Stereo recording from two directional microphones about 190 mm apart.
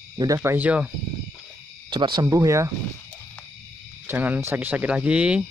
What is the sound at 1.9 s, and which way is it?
Speech, 25° right (ahead or behind).